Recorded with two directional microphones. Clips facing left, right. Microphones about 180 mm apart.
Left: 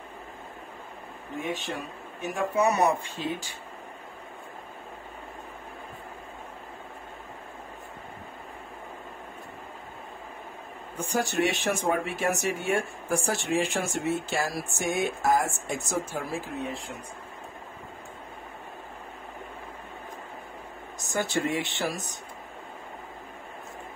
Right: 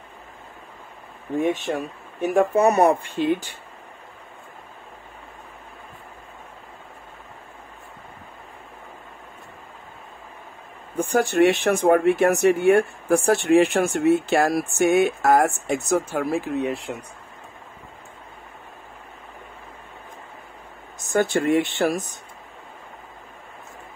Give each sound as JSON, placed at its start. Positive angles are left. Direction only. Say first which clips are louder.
{"t": 2.3, "sound": "speech", "louder": "right 7 dB", "side_deg": -50}
{"t": 11.0, "sound": "speech", "louder": "right 8 dB", "side_deg": -55}
{"t": 21.1, "sound": "speech", "louder": "right 8 dB", "side_deg": -55}